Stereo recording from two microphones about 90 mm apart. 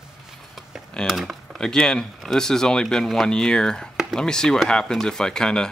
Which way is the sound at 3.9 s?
5° right (ahead or behind).